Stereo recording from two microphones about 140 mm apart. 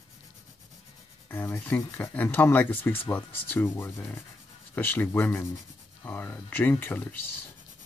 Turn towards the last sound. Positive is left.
turn(degrees=15)  # may be behind; listen again after turning